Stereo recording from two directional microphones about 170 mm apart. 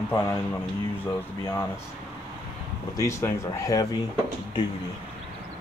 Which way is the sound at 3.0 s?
20° left (ahead or behind).